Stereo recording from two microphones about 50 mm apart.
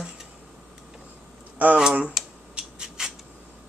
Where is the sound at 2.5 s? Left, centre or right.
Centre.